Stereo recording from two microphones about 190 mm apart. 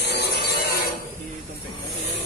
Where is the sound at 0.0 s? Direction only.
60° left (ahead or behind).